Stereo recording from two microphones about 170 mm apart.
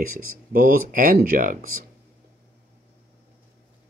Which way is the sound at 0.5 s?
55° right (ahead or behind).